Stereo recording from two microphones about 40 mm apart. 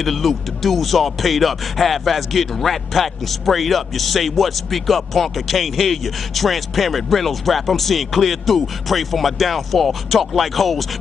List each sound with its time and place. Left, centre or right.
0.0 s speech: centre